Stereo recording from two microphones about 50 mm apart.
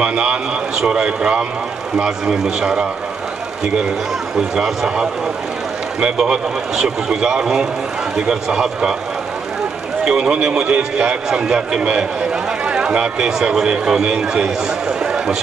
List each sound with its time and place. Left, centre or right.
0.0 s a man's voice: right
4.6 s a man's voice: centre
10.0 s a man's voice: centre